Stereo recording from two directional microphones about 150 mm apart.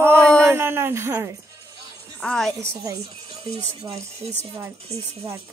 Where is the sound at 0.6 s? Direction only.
15° right (ahead or behind).